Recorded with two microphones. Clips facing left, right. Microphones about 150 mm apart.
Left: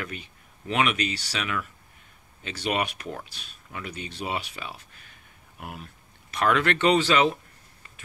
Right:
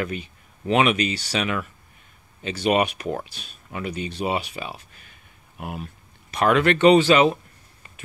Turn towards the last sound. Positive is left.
turn(degrees=-15)  # may be behind; listen again after turning